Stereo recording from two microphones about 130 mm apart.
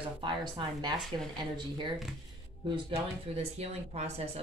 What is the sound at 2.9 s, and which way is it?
Speech, 50° right (ahead or behind).